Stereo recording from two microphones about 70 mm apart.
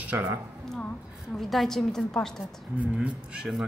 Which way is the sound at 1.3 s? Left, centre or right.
Centre.